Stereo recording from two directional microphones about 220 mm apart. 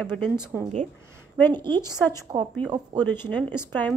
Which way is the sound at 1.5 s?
20° right (ahead or behind).